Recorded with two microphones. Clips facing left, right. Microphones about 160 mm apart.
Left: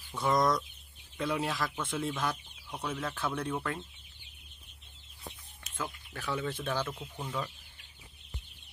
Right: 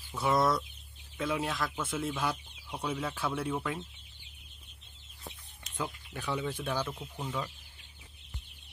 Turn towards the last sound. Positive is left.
turn(degrees=-5)  # may be behind; listen again after turning